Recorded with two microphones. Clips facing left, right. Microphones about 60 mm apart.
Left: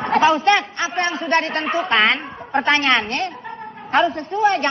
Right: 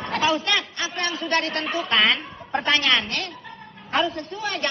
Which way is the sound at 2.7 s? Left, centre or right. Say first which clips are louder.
Left 3 dB; left.